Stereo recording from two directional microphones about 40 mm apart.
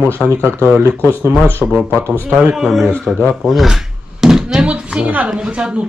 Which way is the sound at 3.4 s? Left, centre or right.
Centre.